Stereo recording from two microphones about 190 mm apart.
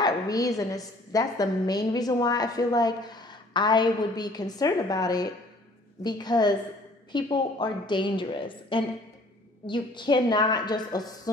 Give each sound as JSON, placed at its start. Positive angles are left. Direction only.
{"t": 0.0, "sound": "a woman's voice", "side_deg": 20}